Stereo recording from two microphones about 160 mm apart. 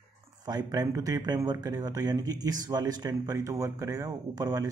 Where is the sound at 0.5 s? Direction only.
25° right (ahead or behind).